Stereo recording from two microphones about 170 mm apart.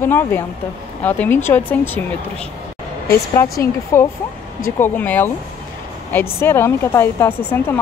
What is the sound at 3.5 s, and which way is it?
Speech, 15° left (ahead or behind).